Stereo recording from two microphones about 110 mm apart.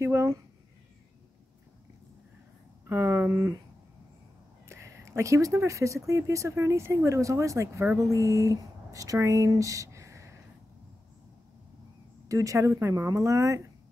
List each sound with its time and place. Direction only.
0.0 s speech: 25° right (ahead or behind)
2.9 s speech: 25° right (ahead or behind)
4.6 s speech: 25° right (ahead or behind)
12.3 s speech: 30° right (ahead or behind)